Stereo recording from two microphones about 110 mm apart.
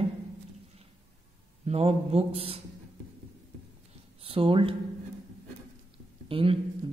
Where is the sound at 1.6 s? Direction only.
65° right (ahead or behind).